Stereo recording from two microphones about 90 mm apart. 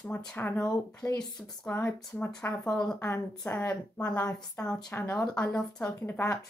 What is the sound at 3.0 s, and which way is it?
Speech, 30° left (ahead or behind).